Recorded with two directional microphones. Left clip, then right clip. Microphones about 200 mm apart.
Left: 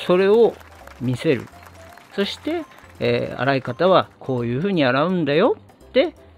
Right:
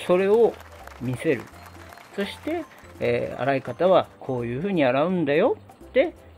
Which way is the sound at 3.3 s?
40° left (ahead or behind).